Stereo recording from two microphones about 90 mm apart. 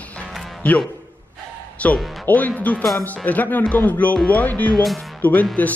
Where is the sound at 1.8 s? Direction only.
15° left (ahead or behind).